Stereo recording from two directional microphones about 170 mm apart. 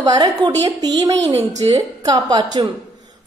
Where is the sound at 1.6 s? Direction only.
30° right (ahead or behind).